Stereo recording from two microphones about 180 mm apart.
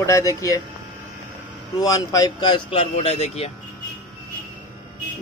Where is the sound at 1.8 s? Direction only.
20° left (ahead or behind); by 3.5 s 35° left (ahead or behind).